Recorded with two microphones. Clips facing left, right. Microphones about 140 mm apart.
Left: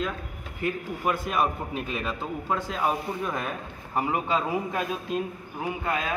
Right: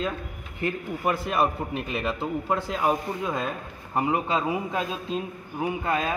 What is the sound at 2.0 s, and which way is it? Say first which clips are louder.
A man's voice: right 3 dB; 10° right (ahead or behind).